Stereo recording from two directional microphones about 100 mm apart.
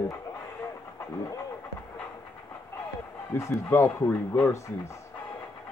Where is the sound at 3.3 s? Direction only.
20° left (ahead or behind).